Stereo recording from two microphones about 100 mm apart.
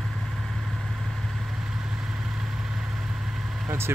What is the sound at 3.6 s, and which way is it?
Vehicle, 25° right (ahead or behind).